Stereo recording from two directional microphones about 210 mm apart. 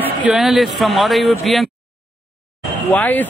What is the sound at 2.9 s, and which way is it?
Speech, 10° left (ahead or behind).